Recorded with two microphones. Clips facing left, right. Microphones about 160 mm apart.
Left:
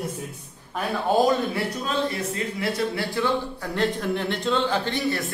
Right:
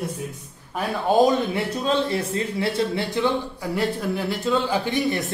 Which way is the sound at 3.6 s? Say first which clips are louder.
Right 1 dB; 10° right (ahead or behind).